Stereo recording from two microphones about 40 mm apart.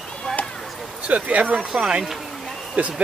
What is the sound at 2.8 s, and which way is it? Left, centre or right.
Speech, right.